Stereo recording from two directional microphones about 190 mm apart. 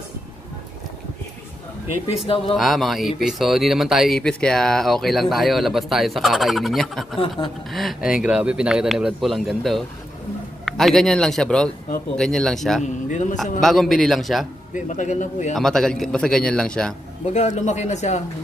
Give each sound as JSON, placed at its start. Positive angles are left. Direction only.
{"t": 2.2, "sound": "speech", "side_deg": 30}
{"t": 2.5, "sound": "speech", "side_deg": 0}
{"t": 7.2, "sound": "speech", "side_deg": 25}
{"t": 7.7, "sound": "speech", "side_deg": 0}
{"t": 12.8, "sound": "a man's voice", "side_deg": 40}
{"t": 13.4, "sound": "speech", "side_deg": 0}
{"t": 14.7, "sound": "a man's voice", "side_deg": 40}
{"t": 15.5, "sound": "speech", "side_deg": 0}
{"t": 17.3, "sound": "a man's voice", "side_deg": 40}